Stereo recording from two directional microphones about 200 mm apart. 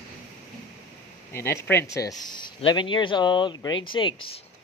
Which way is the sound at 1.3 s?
10° left (ahead or behind).